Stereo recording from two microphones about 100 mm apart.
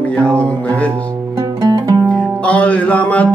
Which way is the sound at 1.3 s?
35° right (ahead or behind).